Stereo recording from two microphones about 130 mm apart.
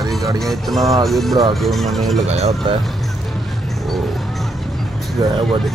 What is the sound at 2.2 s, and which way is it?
Speech, 55° right (ahead or behind).